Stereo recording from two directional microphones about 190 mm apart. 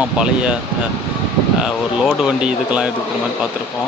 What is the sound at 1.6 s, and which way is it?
Speech, 5° right (ahead or behind).